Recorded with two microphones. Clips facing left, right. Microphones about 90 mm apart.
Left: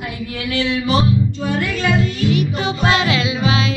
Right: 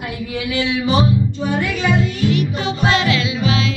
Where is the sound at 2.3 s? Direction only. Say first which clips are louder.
Even; 10° left (ahead or behind).